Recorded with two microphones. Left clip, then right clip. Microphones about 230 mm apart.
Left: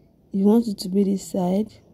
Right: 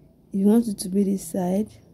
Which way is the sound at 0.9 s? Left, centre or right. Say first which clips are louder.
Left 2 dB; left.